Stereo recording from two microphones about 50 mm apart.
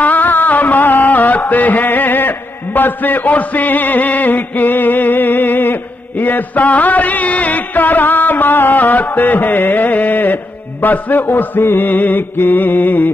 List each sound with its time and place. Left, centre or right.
0.0 s music: left